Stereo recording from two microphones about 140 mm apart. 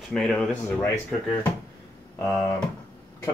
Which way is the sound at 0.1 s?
5° left (ahead or behind).